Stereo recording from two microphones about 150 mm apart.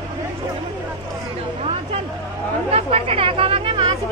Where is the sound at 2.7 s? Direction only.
40° right (ahead or behind).